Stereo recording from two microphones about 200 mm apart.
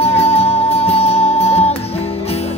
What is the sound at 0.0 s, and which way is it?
Music, 30° left (ahead or behind).